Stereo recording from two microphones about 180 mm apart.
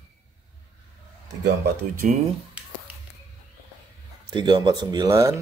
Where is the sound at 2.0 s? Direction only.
45° right (ahead or behind).